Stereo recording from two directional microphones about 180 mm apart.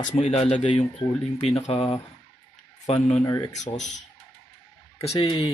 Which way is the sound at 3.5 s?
40° left (ahead or behind).